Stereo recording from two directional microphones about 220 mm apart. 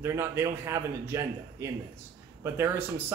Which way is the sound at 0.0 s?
10° right (ahead or behind).